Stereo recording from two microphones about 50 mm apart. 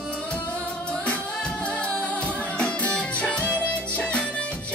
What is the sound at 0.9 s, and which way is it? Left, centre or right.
Music, left.